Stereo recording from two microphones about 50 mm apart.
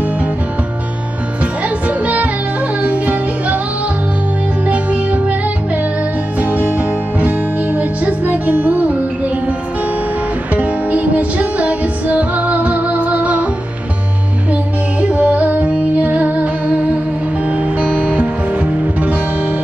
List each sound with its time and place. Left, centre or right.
1.9 s music: right
4.6 s music: right
6.4 s music: right
10.5 s music: right
14.5 s music: right